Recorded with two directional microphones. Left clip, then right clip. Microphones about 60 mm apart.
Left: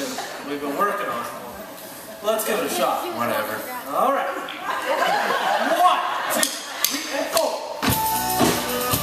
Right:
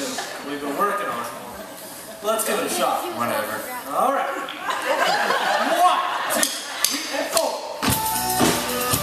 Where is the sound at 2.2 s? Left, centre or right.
Left.